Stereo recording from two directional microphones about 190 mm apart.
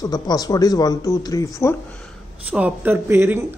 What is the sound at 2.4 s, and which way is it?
Speech, 5° right (ahead or behind).